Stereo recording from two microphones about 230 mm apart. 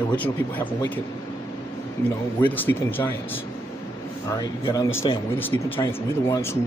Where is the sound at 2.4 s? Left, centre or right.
Centre.